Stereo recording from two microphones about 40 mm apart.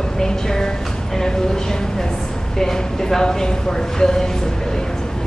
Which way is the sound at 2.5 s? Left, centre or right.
Centre.